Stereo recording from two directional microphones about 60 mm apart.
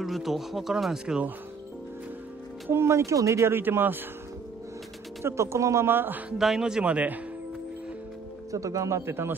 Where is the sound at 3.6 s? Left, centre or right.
Right.